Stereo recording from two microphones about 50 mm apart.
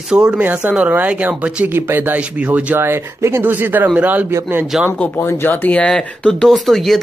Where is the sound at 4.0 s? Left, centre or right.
Right.